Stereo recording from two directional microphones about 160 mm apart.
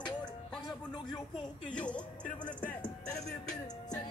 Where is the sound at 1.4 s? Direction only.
5° left (ahead or behind).